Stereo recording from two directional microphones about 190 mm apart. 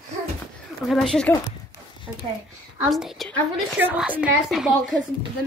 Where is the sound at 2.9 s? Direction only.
Centre (ahead or behind).